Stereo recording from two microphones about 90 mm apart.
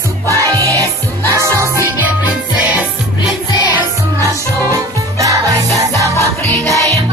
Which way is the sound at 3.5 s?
50° left (ahead or behind).